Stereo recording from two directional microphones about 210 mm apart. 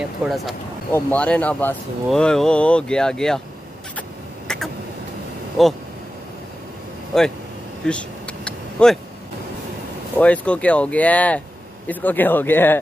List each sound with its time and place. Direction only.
0.2 s speech: 5° right (ahead or behind)
4.5 s a sound: 5° left (ahead or behind)
5.6 s speech: centre (ahead or behind)
7.1 s speech: centre (ahead or behind)
7.8 s vehicle: 5° left (ahead or behind)
10.1 s speech: 5° left (ahead or behind)